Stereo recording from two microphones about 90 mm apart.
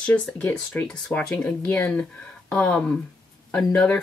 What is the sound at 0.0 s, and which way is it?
Speech, 15° left (ahead or behind).